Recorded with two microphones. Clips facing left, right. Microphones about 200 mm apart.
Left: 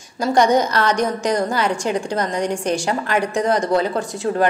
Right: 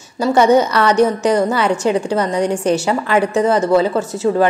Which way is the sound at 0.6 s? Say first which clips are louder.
Right 5 dB; 5° right (ahead or behind).